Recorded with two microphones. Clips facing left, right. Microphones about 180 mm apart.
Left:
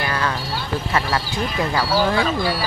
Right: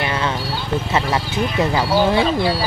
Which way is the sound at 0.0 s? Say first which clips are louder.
Right 2 dB; 25° right (ahead or behind).